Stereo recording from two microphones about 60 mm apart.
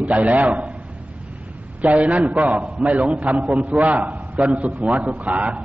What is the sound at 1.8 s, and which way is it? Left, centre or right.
A man's voice, right.